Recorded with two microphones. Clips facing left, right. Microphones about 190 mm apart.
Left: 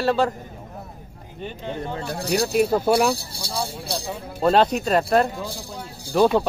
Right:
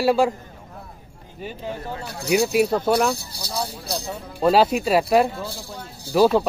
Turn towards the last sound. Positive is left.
turn(degrees=-5)  # may be behind; listen again after turning